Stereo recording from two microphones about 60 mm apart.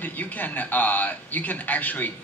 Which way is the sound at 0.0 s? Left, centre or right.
Left.